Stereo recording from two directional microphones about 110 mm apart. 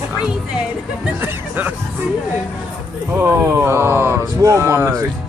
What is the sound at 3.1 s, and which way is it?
Speech, 20° right (ahead or behind).